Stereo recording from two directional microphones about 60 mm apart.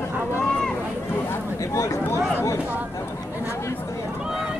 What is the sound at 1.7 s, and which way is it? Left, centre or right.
Speech, left.